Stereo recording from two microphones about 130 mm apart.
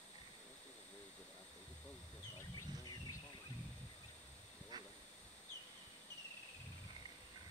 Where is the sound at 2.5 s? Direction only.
35° left (ahead or behind).